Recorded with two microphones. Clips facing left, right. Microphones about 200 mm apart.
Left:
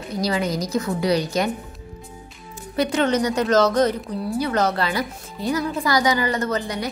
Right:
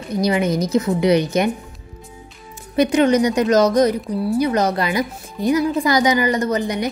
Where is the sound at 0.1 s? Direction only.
20° right (ahead or behind).